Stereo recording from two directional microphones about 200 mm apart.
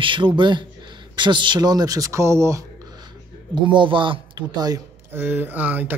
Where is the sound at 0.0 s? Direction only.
25° right (ahead or behind).